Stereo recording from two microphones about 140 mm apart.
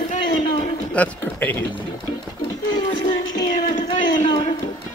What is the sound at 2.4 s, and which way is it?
Music, 30° left (ahead or behind).